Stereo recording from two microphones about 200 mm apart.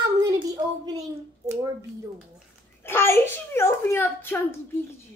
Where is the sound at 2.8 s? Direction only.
10° left (ahead or behind).